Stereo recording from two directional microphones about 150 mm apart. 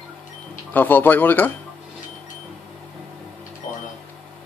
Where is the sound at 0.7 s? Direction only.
10° left (ahead or behind).